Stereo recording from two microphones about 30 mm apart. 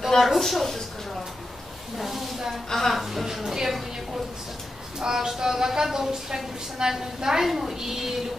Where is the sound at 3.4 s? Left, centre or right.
Centre.